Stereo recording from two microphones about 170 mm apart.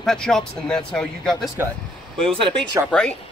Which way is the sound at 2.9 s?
10° left (ahead or behind).